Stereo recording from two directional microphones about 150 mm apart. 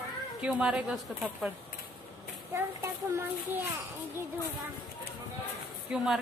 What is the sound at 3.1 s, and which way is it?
Speech, 15° right (ahead or behind).